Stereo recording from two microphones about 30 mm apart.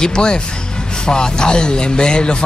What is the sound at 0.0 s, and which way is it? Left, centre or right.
A man's voice, left.